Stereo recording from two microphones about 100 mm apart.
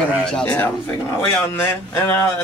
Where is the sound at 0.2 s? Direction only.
10° left (ahead or behind).